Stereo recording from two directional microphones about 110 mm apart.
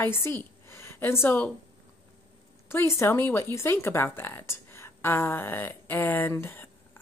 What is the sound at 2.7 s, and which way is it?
A woman's voice, 25° left (ahead or behind).